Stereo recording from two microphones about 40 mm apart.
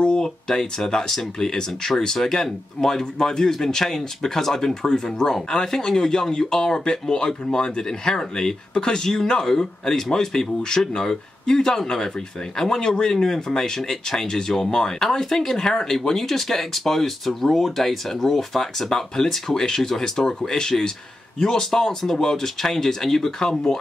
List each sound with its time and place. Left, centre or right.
0.0 s speech: centre